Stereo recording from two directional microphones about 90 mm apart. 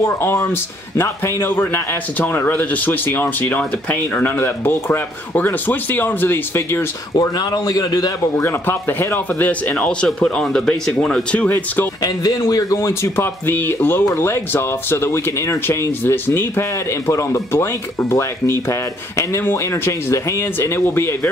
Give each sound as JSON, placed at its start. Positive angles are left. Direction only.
{"t": 0.0, "sound": "speech", "side_deg": 30}
{"t": 7.2, "sound": "speech", "side_deg": 45}
{"t": 8.5, "sound": "speech", "side_deg": 25}
{"t": 11.4, "sound": "speech", "side_deg": 20}
{"t": 12.0, "sound": "speech", "side_deg": 45}
{"t": 12.7, "sound": "speech", "side_deg": 30}